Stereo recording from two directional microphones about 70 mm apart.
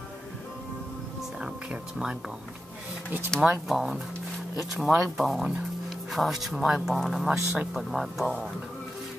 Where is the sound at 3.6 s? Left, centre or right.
Centre.